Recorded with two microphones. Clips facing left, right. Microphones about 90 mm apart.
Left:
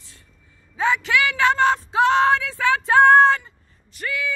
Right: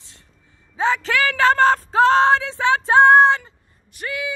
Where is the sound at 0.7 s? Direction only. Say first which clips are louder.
Right 1 dB; 35° right (ahead or behind).